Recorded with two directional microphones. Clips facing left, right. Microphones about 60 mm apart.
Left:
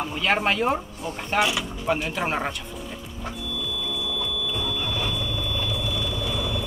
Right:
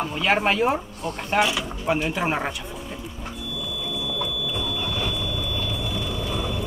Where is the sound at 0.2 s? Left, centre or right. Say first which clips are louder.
Right 2 dB; centre.